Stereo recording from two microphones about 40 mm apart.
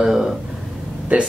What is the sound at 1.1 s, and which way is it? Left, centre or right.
Speech, right.